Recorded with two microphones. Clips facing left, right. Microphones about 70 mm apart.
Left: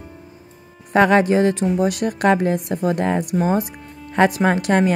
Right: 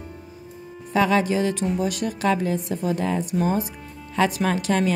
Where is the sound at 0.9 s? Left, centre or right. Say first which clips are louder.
Left 6 dB; left.